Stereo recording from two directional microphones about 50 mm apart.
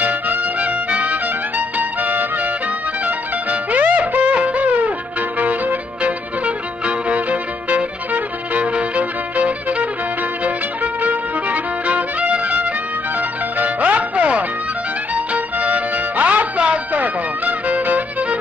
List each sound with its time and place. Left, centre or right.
0.0 s music: right
7.1 s violin: right
10.4 s music: right